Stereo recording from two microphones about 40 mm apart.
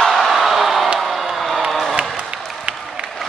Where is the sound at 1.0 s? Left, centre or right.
Centre.